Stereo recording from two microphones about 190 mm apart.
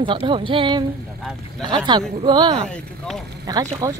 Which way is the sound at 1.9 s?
25° right (ahead or behind).